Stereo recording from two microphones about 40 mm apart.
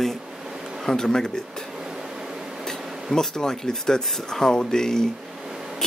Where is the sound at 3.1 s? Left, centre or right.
Centre.